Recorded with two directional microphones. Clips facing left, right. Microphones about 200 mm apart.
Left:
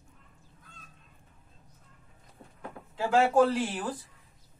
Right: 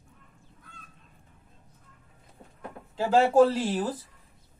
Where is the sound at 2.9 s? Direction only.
30° right (ahead or behind).